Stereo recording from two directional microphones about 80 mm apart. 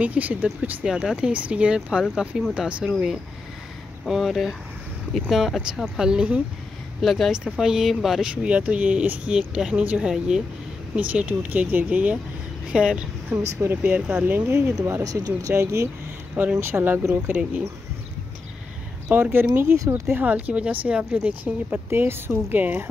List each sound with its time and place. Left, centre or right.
0.0 s speech: centre
0.8 s speech: centre
4.0 s speech: centre
7.0 s speech: centre
8.5 s speech: centre
13.6 s speech: right
14.8 s speech: right
15.0 s speech: right
15.5 s speech: right
19.0 s speech: centre
19.5 s speech: right
21.9 s speech: right